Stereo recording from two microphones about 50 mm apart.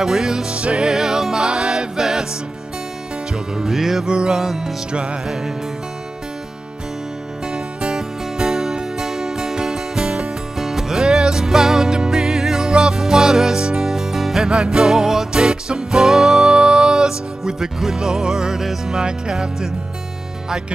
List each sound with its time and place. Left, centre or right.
0.0 s music: centre
0.6 s music: right
0.8 s music: centre
3.5 s music: centre
7.5 s music: centre